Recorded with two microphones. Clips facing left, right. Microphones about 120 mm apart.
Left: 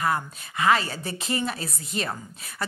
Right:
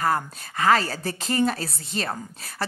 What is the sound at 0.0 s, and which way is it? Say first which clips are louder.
A woman's voice: right 2 dB; 35° right (ahead or behind).